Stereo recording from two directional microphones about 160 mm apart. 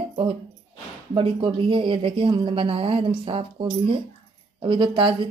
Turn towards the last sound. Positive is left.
turn(degrees=-30)  # may be behind; listen again after turning